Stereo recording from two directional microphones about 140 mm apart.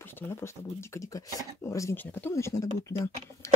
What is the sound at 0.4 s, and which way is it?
Speech, 20° left (ahead or behind).